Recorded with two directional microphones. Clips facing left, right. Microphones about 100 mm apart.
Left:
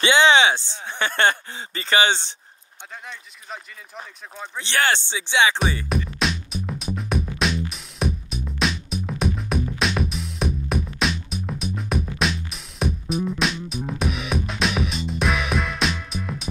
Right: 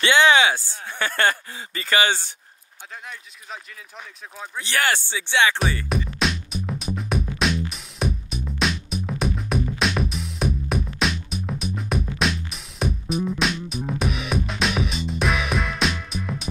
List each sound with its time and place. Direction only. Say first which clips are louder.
0.0 s speech: left 1 dB; 20° left (ahead or behind)
3.1 s speech: left 2 dB; centre (ahead or behind)
4.6 s speech: left 1 dB; 30° left (ahead or behind)
5.9 s music: even; centre (ahead or behind)